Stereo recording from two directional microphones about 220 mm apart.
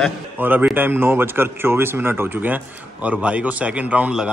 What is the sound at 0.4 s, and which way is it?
Speech, 10° right (ahead or behind).